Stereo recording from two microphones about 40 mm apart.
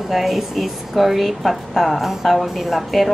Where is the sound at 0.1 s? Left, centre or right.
Centre.